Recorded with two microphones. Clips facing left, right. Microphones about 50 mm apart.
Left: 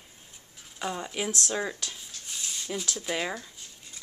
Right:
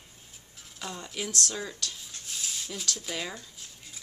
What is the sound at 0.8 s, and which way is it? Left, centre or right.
Speech, centre.